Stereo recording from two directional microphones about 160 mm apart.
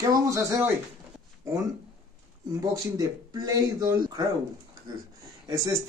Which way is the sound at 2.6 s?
20° right (ahead or behind).